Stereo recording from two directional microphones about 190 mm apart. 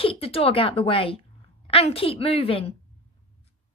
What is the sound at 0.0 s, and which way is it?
Speech, 30° left (ahead or behind).